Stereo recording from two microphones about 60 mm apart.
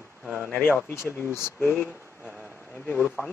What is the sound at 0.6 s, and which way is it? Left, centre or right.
Speech, left.